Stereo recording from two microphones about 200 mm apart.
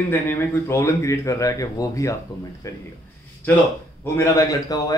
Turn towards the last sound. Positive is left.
turn(degrees=15)  # may be behind; listen again after turning